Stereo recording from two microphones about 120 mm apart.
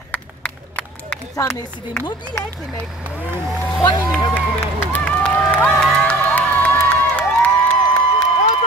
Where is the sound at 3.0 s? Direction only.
15° right (ahead or behind).